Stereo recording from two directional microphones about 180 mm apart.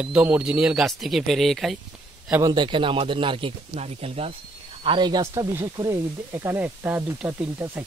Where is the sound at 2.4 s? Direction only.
25° right (ahead or behind).